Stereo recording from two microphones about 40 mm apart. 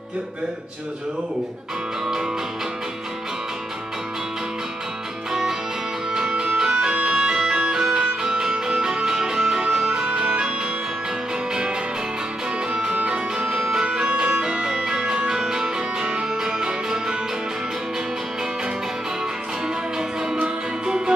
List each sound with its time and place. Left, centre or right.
5.3 s music: centre
12.9 s music: right
13.6 s music: centre
20.4 s music: right